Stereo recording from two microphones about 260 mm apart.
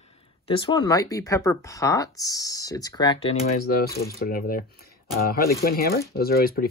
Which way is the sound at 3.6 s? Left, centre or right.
Left.